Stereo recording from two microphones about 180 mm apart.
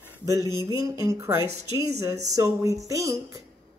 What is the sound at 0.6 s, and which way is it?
Speech, 20° right (ahead or behind).